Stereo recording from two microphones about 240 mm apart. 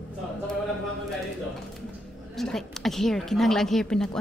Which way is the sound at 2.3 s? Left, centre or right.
Centre.